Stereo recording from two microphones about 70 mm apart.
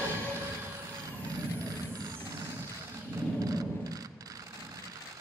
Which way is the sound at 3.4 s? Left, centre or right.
Right.